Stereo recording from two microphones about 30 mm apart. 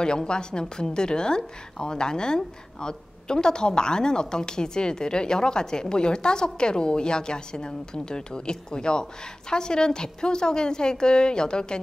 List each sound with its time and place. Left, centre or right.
0.0 s a woman's voice: left